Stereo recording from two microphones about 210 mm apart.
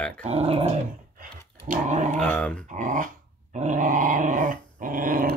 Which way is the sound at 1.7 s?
35° right (ahead or behind).